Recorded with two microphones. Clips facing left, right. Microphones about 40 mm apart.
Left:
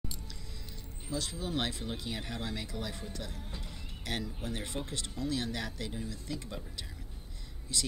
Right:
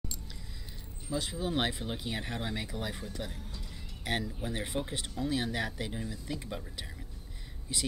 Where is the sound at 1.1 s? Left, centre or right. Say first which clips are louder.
Right 3 dB; centre.